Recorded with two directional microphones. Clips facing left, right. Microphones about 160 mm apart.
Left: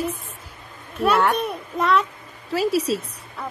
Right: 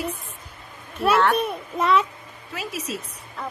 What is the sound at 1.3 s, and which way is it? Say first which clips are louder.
Speech: even; centre (ahead or behind).